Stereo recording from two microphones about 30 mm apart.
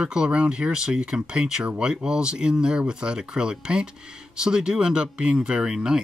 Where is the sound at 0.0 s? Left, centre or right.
Right.